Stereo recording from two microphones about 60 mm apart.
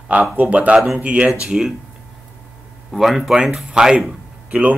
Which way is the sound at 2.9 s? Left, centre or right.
Centre.